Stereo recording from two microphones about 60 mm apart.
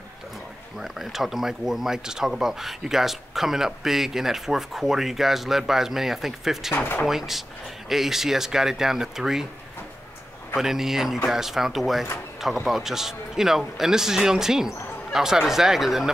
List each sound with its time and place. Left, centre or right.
0.7 s speech: centre
6.7 s speech: left
7.1 s a man's voice: centre
10.5 s a man's voice: centre